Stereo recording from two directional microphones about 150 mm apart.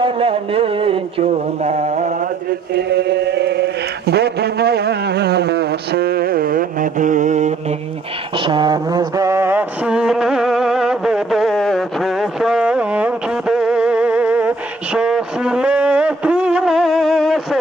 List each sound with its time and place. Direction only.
0.0 s music: 35° right (ahead or behind); by 2.2 s 55° right (ahead or behind)
2.7 s chant: 90° right; by 7.5 s 55° right (ahead or behind)
8.4 s mantra: 30° right (ahead or behind); by 17.6 s centre (ahead or behind)